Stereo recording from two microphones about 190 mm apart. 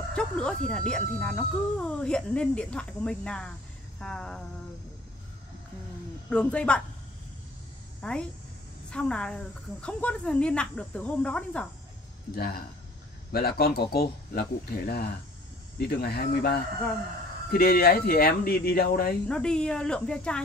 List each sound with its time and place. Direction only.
0.1 s speech: 5° left (ahead or behind)
6.3 s speech: 5° left (ahead or behind)
8.0 s a woman's voice: 5° left (ahead or behind)
12.4 s speech: 50° left (ahead or behind)
19.2 s speech: 5° left (ahead or behind)